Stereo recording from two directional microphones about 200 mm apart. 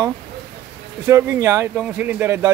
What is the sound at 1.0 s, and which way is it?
Speech, 10° right (ahead or behind).